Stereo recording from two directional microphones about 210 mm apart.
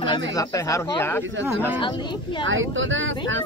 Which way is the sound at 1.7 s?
25° left (ahead or behind).